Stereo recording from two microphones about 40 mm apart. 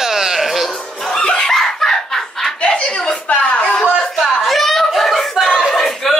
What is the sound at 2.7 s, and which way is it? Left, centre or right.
Chuckle, centre.